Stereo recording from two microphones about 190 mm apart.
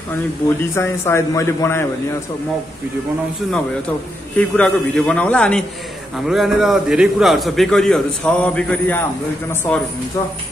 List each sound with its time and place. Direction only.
0.6 s a man's voice: 15° left (ahead or behind)
4.4 s a man's voice: 5° left (ahead or behind)